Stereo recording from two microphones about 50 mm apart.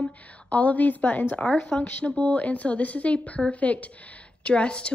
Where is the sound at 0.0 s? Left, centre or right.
Left.